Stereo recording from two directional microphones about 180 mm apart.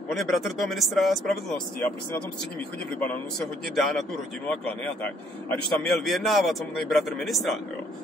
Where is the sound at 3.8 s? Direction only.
Centre (ahead or behind).